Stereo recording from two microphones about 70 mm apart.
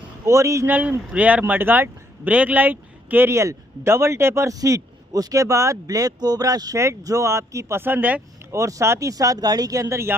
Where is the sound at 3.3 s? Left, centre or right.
Right.